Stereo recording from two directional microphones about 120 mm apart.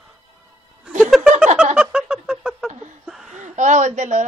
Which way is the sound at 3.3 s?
90° right.